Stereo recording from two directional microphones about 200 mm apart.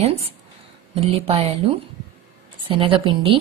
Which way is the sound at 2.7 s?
25° right (ahead or behind).